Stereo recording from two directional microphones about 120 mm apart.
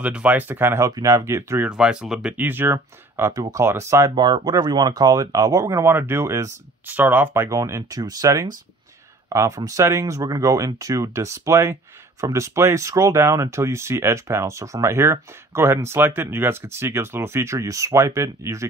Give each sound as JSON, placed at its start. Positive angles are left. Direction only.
{"t": 0.0, "sound": "speech", "side_deg": -10}
{"t": 1.7, "sound": "speech", "side_deg": -5}
{"t": 4.1, "sound": "speech", "side_deg": -35}